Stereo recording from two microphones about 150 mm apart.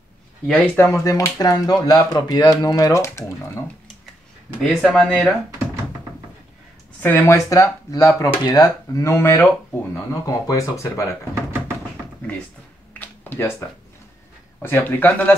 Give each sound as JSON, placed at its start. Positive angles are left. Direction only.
{"t": 0.5, "sound": "speech", "side_deg": 10}
{"t": 4.6, "sound": "speech", "side_deg": 0}
{"t": 7.0, "sound": "speech", "side_deg": 15}
{"t": 13.0, "sound": "a sound", "side_deg": 15}
{"t": 14.6, "sound": "speech", "side_deg": 15}